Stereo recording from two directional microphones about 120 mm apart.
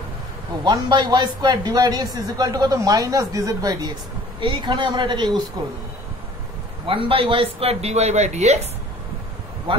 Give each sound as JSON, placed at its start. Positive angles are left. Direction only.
{"t": 0.7, "sound": "a man's voice", "side_deg": -35}
{"t": 4.4, "sound": "a man's voice", "side_deg": -40}
{"t": 6.9, "sound": "speech", "side_deg": -45}
{"t": 7.8, "sound": "speech", "side_deg": -65}